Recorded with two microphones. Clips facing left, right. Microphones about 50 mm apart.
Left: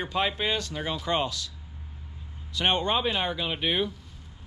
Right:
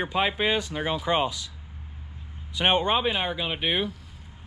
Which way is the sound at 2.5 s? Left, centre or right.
Centre.